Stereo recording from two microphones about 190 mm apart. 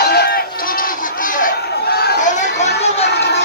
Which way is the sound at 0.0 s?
55° left (ahead or behind).